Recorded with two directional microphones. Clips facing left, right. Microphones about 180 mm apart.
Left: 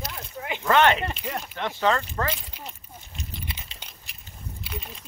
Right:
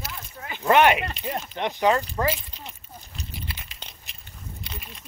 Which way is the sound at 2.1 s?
5° right (ahead or behind).